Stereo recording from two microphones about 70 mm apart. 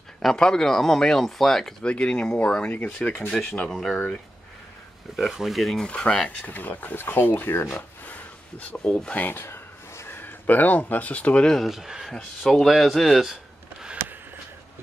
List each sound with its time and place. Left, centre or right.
0.2 s speech: centre
3.1 s speech: centre
5.1 s speech: centre
5.9 s speech: centre; by 7.8 s left
8.0 s a sound: left
8.7 s speech: centre
11.4 s speech: centre
12.1 s speech: centre